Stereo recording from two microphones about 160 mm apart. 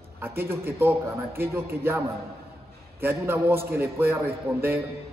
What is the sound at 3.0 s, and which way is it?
A man's voice, 15° right (ahead or behind).